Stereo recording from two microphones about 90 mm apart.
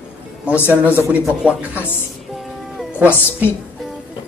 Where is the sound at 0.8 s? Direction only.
20° right (ahead or behind).